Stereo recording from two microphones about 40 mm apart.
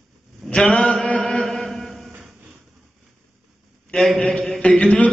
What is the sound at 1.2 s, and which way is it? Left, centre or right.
Chant, left.